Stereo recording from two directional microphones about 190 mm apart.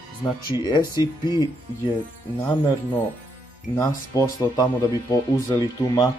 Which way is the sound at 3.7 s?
15° left (ahead or behind).